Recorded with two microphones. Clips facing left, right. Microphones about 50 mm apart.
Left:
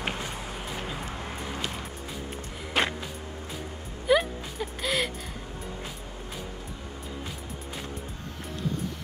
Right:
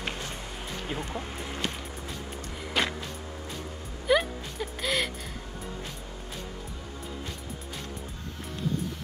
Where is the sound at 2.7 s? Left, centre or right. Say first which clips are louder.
Left 2 dB; centre.